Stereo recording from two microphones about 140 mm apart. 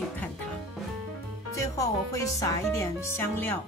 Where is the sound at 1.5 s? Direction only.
25° left (ahead or behind).